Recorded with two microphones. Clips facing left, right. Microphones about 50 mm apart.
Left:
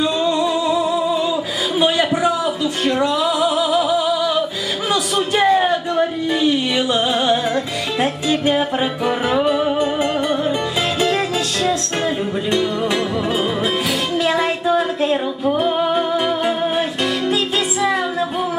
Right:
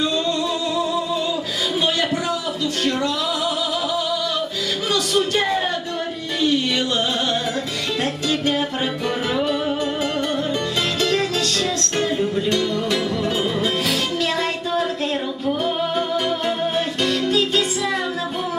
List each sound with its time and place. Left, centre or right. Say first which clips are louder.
0.0 s music: left 4 dB; centre
1.8 s a sound: left 6 dB; centre
2.8 s music: left 5 dB; centre
4.9 s a sound: left 2 dB; centre
7.2 s music: left 5 dB; centre
11.6 s music: left 3 dB; centre
14.1 s music: left 4 dB; centre